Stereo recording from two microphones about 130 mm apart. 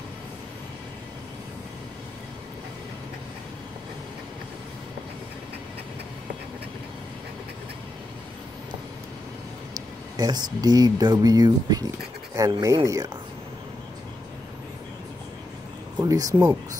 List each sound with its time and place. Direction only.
10.1 s speech: 30° right (ahead or behind)
16.0 s speech: 25° right (ahead or behind)